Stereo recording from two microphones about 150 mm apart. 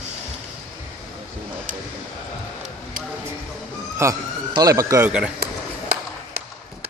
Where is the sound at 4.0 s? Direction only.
20° right (ahead or behind).